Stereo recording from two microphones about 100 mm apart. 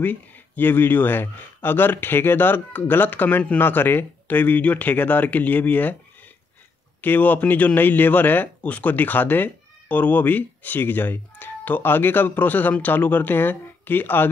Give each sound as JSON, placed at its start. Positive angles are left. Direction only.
{"t": 0.0, "sound": "speech", "side_deg": 20}
{"t": 7.0, "sound": "a man's voice", "side_deg": 15}